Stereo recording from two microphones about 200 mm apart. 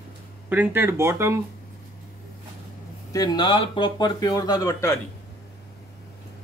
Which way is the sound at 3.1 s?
20° left (ahead or behind).